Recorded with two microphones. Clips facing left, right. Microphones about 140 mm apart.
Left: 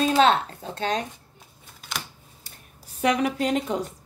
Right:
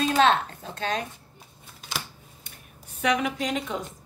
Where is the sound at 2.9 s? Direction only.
35° left (ahead or behind).